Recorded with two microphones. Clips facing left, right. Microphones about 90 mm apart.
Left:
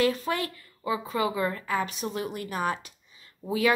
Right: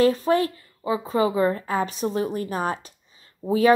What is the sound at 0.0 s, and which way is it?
A woman's voice, 35° right (ahead or behind).